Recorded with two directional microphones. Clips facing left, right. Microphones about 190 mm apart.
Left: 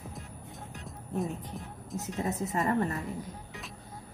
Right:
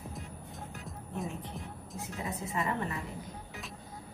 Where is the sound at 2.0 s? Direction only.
45° left (ahead or behind).